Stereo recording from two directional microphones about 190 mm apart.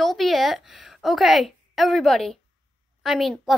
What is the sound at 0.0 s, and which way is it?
A woman's voice, centre (ahead or behind).